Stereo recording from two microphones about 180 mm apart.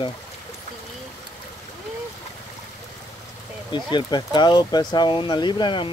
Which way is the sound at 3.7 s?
25° left (ahead or behind).